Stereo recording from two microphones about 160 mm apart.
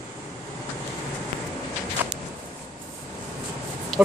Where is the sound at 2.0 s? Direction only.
10° right (ahead or behind).